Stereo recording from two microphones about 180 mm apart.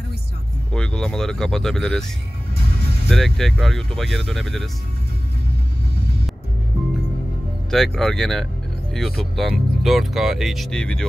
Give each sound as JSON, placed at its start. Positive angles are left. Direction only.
{"t": 0.7, "sound": "speech", "side_deg": 5}
{"t": 2.5, "sound": "music", "side_deg": -65}
{"t": 3.1, "sound": "speech", "side_deg": 0}
{"t": 7.7, "sound": "speech", "side_deg": 0}